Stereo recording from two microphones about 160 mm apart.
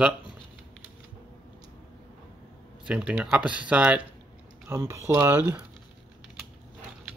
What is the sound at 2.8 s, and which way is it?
Speech, 10° right (ahead or behind).